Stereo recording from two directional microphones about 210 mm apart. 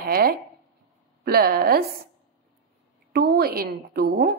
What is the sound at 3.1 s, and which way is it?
A woman's voice, 45° right (ahead or behind).